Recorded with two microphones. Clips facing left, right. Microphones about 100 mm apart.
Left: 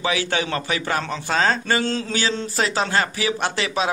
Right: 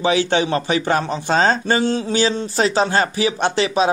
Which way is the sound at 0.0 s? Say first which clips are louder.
Right 6 dB; 25° right (ahead or behind).